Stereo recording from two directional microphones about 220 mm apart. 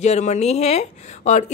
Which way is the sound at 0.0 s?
30° left (ahead or behind).